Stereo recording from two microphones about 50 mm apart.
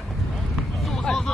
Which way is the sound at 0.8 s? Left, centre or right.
Centre.